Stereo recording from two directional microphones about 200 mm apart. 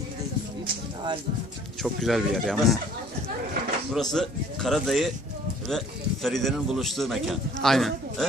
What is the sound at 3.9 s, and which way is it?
A man's voice, centre (ahead or behind).